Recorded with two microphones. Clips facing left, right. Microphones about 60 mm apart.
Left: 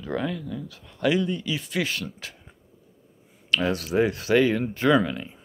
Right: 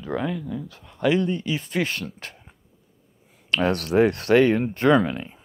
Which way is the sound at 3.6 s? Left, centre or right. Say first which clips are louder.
Right 5 dB; right.